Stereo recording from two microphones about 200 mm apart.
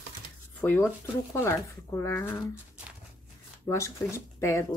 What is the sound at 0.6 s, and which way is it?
Speech, 10° left (ahead or behind).